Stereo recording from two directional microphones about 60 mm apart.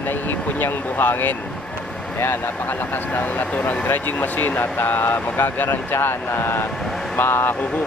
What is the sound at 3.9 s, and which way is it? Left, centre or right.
Speech, left.